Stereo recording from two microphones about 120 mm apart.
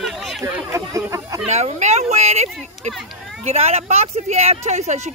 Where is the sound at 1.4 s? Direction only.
65° right (ahead or behind).